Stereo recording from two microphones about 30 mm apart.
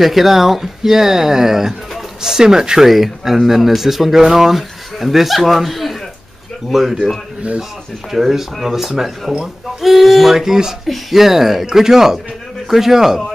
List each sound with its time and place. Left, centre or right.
0.0 s speech: centre; by 2.9 s right
2.9 s speech: centre
8.1 s speech: centre